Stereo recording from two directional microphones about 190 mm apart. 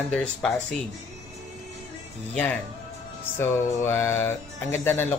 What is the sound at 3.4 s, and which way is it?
Speech, 15° left (ahead or behind).